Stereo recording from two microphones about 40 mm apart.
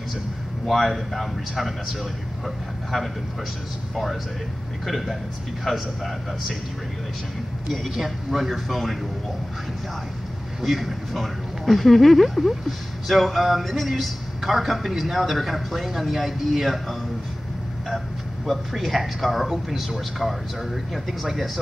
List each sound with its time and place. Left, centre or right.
0.7 s speech: centre
5.7 s a man's voice: centre
7.7 s speech: centre
10.6 s speech: centre
17.8 s speech: centre